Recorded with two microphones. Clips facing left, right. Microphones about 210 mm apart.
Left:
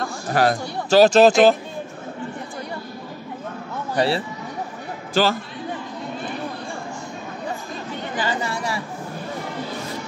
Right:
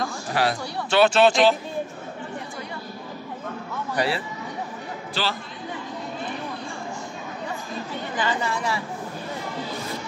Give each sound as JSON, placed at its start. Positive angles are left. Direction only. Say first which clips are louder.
{"t": 0.3, "sound": "speech", "louder": "left 6 dB", "side_deg": 45}
{"t": 3.9, "sound": "a man's voice", "louder": "left 4 dB", "side_deg": 30}
{"t": 5.2, "sound": "speech", "louder": "left 9 dB", "side_deg": 45}
{"t": 8.2, "sound": "speech", "louder": "even", "side_deg": 35}